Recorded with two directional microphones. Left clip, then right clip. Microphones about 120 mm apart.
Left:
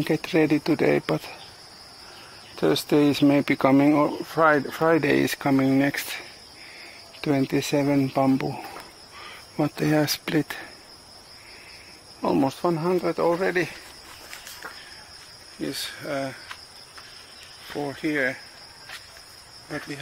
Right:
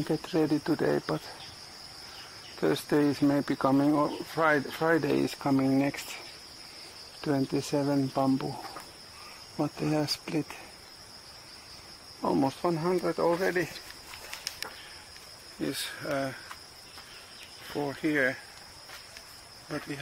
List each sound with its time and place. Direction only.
0.0 s speech: 30° left (ahead or behind)
2.6 s speech: 40° left (ahead or behind)
9.6 s speech: 25° left (ahead or behind)
12.2 s speech: 25° left (ahead or behind)
15.6 s speech: centre (ahead or behind)
17.7 s speech: 5° left (ahead or behind)